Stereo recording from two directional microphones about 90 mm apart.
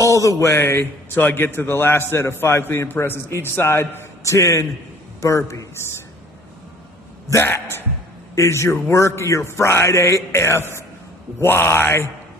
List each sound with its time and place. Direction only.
0.0 s a man's voice: 35° left (ahead or behind)
7.2 s a man's voice: 30° left (ahead or behind)